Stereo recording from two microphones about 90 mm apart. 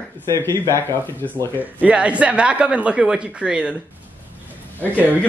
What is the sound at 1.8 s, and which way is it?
Speech, 15° right (ahead or behind).